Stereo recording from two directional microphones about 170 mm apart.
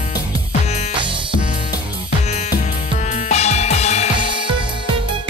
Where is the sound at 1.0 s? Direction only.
30° right (ahead or behind).